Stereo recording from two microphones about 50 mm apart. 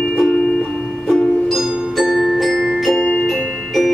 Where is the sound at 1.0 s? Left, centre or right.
Centre.